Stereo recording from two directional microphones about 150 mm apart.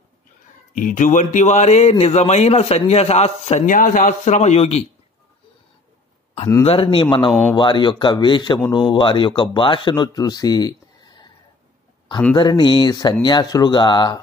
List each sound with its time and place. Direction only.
0.7 s a man's voice: 60° left (ahead or behind); by 3.6 s 45° left (ahead or behind)
3.6 s a man's voice: 65° left (ahead or behind)
4.2 s a man's voice: 50° left (ahead or behind)
6.6 s speech: 40° left (ahead or behind)
12.4 s speech: 30° left (ahead or behind)